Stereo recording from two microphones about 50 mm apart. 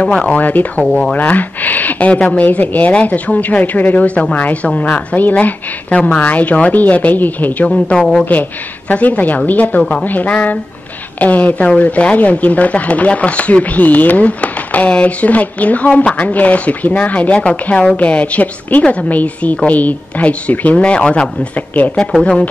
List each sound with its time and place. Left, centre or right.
0.0 s speech: left
0.4 s speech: left
0.8 s speech: centre
1.1 s speech: left
7.6 s speech: centre
8.3 s speech: left